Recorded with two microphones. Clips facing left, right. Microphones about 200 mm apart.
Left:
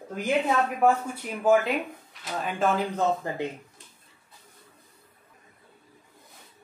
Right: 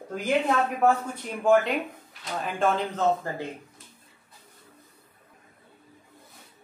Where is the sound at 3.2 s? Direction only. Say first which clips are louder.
Left 1 dB; 20° left (ahead or behind).